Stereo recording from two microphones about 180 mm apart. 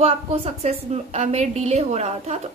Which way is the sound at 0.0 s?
35° right (ahead or behind).